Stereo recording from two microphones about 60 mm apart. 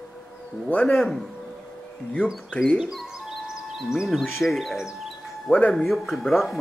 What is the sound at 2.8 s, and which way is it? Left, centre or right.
Speech, centre.